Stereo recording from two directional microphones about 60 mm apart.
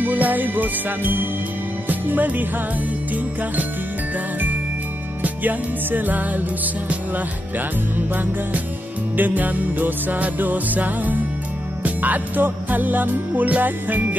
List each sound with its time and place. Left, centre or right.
0.0 s music: right
5.2 s music: right